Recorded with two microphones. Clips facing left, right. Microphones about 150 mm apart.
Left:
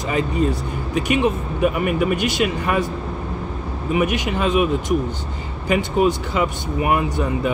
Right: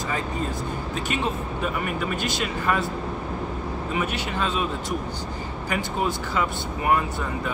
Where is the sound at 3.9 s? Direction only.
15° left (ahead or behind).